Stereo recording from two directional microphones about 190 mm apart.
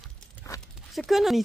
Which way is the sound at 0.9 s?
Centre (ahead or behind).